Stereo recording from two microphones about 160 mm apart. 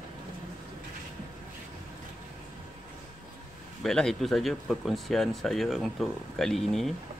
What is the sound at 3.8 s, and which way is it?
Speech, 5° left (ahead or behind).